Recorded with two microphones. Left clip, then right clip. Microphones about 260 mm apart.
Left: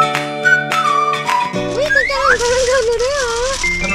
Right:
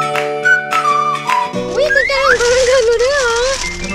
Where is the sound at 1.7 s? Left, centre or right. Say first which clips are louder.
Right 2 dB; centre.